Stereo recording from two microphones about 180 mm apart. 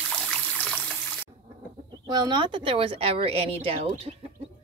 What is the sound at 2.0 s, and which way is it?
Speech, 25° right (ahead or behind).